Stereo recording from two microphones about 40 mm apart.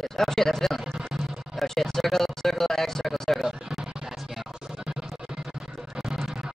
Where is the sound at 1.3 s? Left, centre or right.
Centre.